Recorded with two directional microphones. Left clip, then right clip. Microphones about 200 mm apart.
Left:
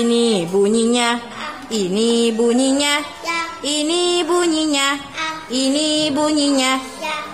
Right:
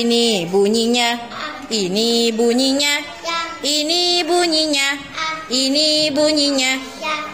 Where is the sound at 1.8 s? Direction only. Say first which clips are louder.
Even; 30° left (ahead or behind).